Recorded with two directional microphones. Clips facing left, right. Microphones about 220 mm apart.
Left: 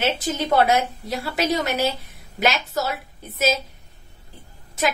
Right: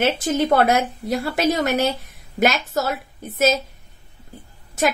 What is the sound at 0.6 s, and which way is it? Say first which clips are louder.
A woman's voice: right 1 dB; 50° right (ahead or behind).